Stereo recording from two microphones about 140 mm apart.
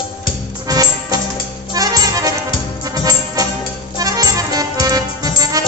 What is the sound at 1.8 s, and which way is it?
Music, 25° right (ahead or behind).